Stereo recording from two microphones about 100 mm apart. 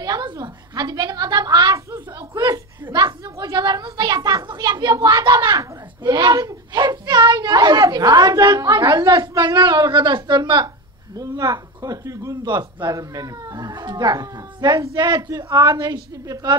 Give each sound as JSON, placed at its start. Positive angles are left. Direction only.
{"t": 0.0, "sound": "a woman's voice", "side_deg": -40}
{"t": 1.9, "sound": "a sound", "side_deg": -35}
{"t": 9.4, "sound": "speech", "side_deg": -55}
{"t": 11.1, "sound": "a sound", "side_deg": -40}
{"t": 12.4, "sound": "speech", "side_deg": -45}
{"t": 15.2, "sound": "speech", "side_deg": -30}
{"t": 15.6, "sound": "speech", "side_deg": -45}